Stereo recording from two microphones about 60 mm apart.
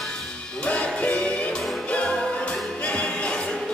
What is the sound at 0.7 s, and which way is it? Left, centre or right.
Music, left.